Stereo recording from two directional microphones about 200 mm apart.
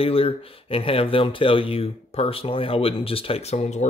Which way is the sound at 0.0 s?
30° left (ahead or behind).